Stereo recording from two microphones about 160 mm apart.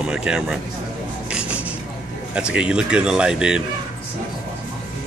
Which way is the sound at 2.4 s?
5° right (ahead or behind).